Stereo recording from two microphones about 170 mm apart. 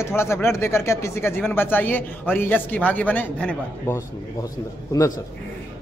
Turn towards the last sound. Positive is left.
turn(degrees=20)  # may be behind; listen again after turning